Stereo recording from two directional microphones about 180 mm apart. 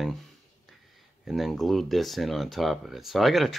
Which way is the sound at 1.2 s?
Centre (ahead or behind).